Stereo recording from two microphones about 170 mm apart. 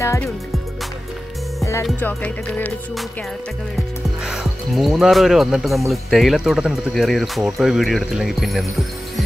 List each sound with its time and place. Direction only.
0.0 s music: 15° left (ahead or behind)
1.6 s music: 15° left (ahead or behind)
4.2 s speech: 5° right (ahead or behind)